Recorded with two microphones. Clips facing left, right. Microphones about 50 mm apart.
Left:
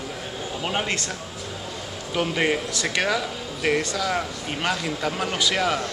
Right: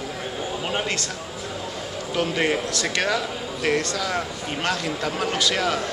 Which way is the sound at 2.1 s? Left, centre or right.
Centre.